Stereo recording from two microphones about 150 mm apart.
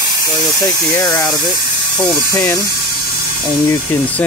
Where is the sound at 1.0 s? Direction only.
25° left (ahead or behind).